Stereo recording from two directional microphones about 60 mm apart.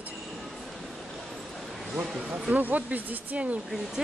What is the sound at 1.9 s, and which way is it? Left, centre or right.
Speech, centre.